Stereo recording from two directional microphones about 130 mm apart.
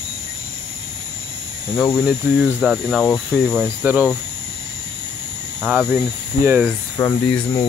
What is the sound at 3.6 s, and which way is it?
Speech, 10° right (ahead or behind).